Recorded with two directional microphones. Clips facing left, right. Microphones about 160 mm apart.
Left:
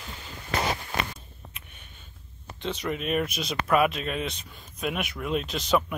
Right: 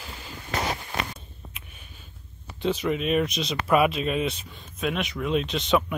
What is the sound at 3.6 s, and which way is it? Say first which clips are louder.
Speech: right 2 dB; 5° right (ahead or behind).